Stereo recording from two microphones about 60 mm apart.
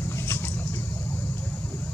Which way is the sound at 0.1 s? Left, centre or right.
Left.